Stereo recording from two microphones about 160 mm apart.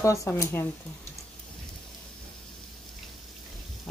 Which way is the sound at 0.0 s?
20° left (ahead or behind).